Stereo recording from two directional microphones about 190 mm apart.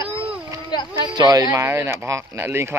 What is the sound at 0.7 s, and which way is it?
Speech, 25° left (ahead or behind).